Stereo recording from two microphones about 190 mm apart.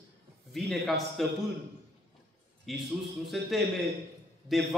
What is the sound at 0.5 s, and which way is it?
Speech, centre (ahead or behind).